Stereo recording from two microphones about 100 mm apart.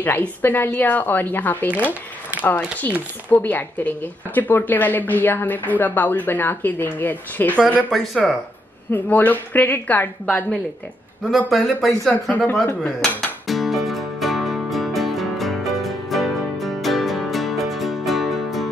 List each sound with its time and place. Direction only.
0.0 s speech: 15° left (ahead or behind)
7.9 s speech: centre (ahead or behind)
8.9 s speech: 15° left (ahead or behind)
11.2 s speech: centre (ahead or behind)
13.5 s music: centre (ahead or behind)